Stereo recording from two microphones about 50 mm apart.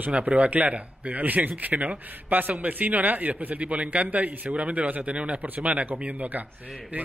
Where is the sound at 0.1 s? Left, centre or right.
Right.